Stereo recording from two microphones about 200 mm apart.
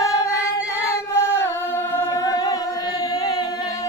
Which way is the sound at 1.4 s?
10° left (ahead or behind).